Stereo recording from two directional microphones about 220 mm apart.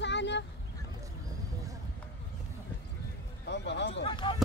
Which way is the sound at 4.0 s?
20° left (ahead or behind).